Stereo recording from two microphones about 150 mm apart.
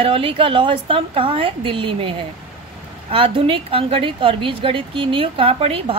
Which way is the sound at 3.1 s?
40° right (ahead or behind).